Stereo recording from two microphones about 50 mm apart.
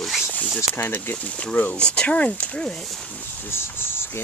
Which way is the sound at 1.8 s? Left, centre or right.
Centre.